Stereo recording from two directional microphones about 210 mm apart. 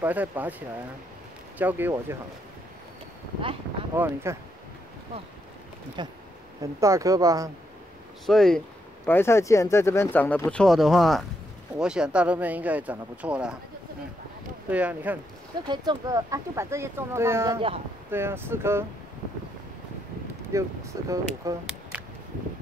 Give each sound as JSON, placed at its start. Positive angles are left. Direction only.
{"t": 0.0, "sound": "speech", "side_deg": -5}
{"t": 3.9, "sound": "speech", "side_deg": -10}
{"t": 6.0, "sound": "speech", "side_deg": -20}
{"t": 8.3, "sound": "speech", "side_deg": 0}
{"t": 14.7, "sound": "speech", "side_deg": -5}
{"t": 15.6, "sound": "speech", "side_deg": -20}
{"t": 17.6, "sound": "speech", "side_deg": -25}
{"t": 18.1, "sound": "speech", "side_deg": -10}
{"t": 20.5, "sound": "speech", "side_deg": -15}